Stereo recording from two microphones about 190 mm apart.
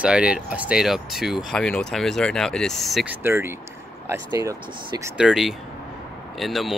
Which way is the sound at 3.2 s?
10° right (ahead or behind).